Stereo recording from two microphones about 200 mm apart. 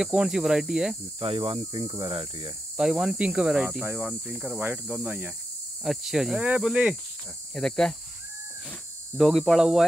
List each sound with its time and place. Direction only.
0.0 s speech: 5° right (ahead or behind)
1.2 s speech: 30° right (ahead or behind)
2.8 s speech: 5° right (ahead or behind)
9.1 s speech: centre (ahead or behind)